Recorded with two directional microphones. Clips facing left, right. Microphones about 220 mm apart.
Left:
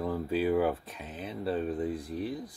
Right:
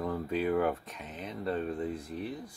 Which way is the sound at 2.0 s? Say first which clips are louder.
Left 3 dB; 35° left (ahead or behind).